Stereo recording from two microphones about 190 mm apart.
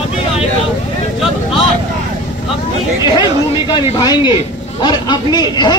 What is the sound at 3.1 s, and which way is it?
Chatter, 20° left (ahead or behind).